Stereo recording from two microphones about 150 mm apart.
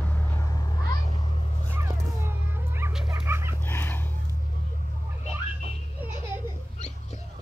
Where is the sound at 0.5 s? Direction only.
25° left (ahead or behind).